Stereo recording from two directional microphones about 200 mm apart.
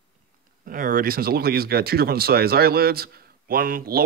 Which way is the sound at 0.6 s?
45° right (ahead or behind).